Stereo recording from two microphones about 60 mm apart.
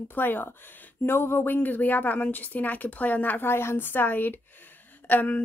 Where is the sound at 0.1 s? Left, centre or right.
Left.